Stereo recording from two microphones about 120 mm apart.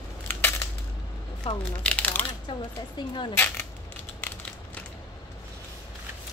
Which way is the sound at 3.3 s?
20° left (ahead or behind).